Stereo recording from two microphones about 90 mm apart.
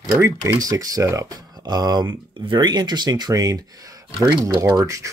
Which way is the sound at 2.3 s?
65° right (ahead or behind).